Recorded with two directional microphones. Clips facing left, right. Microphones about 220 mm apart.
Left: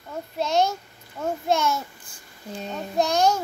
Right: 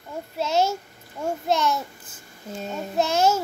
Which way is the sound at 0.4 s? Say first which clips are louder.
Even; 5° right (ahead or behind).